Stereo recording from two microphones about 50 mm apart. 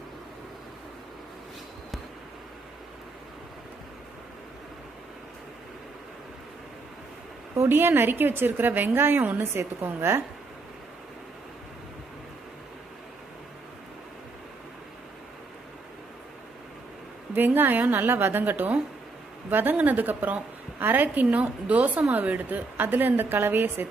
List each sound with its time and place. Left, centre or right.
7.6 s a woman's voice: right
17.3 s a woman's voice: right